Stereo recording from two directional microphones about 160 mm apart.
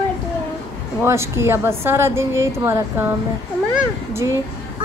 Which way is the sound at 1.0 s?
15° right (ahead or behind).